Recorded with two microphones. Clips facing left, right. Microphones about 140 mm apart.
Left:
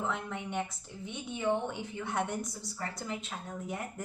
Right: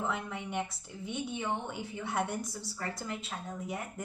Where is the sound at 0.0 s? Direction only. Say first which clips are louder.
Even; centre (ahead or behind).